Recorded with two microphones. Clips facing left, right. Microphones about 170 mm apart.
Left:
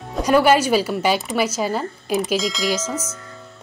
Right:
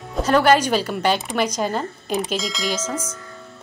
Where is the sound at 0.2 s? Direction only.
10° left (ahead or behind).